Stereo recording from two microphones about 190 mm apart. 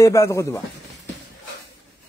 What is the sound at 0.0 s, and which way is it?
Speech, 15° left (ahead or behind).